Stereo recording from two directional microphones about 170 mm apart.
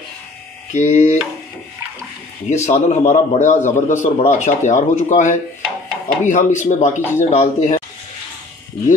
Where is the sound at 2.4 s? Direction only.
40° left (ahead or behind).